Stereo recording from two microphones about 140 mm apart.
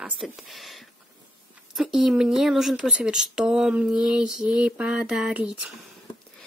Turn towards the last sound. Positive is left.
turn(degrees=-10)  # may be behind; listen again after turning